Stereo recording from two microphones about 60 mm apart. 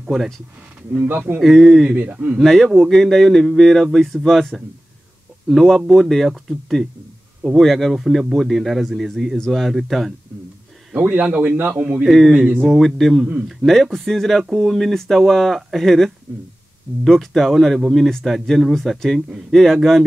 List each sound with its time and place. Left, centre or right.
0.9 s speech: right
1.4 s speech: centre
2.0 s a man's voice: right
2.4 s speech: centre
11.0 s a man's voice: right
12.3 s speech: centre
12.6 s speech: centre